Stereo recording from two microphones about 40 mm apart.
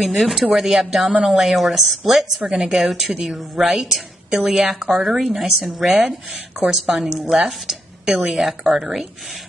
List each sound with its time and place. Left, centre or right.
0.0 s speech: centre
5.0 s a woman's voice: right
5.3 s speech: centre
8.0 s speech: centre
8.3 s speech: centre